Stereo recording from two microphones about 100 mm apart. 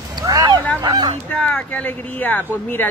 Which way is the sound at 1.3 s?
15° left (ahead or behind).